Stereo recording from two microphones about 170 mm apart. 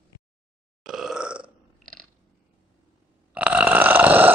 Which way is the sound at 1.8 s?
5° left (ahead or behind).